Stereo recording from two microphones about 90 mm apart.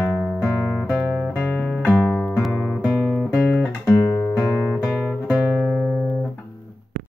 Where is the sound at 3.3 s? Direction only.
15° left (ahead or behind).